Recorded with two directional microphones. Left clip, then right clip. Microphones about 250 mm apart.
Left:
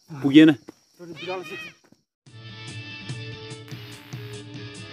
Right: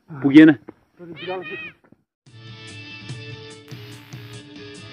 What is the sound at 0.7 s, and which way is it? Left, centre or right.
Speech, left.